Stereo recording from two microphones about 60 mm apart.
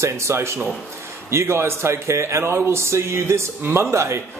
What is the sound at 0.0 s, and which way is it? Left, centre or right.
A man's voice, right.